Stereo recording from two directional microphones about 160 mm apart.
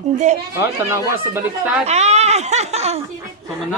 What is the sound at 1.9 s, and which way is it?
Speech, 45° right (ahead or behind).